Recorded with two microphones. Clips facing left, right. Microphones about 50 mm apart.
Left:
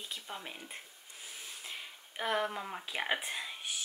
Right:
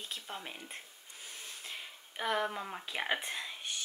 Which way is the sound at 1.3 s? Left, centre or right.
Centre.